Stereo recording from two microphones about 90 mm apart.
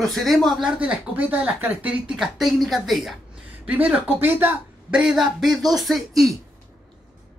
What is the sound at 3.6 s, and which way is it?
Speech, 20° right (ahead or behind).